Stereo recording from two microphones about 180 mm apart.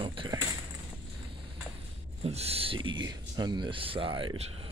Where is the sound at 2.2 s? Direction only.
35° right (ahead or behind).